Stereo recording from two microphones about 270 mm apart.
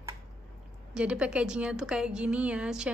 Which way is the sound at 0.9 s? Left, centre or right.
Centre.